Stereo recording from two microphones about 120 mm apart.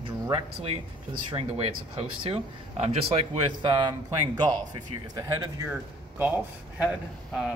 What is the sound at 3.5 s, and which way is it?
A man's voice, 40° right (ahead or behind).